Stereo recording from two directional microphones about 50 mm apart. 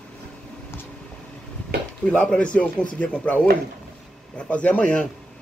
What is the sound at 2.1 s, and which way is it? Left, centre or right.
A man's voice, left.